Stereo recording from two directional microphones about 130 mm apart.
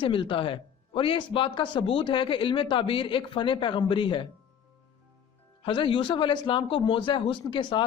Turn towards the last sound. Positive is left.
turn(degrees=35)  # may be behind; listen again after turning